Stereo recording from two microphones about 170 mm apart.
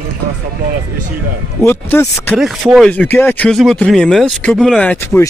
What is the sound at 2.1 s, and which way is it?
Speech, centre (ahead or behind).